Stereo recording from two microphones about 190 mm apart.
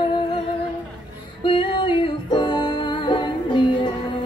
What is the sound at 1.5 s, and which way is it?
Music, 25° left (ahead or behind).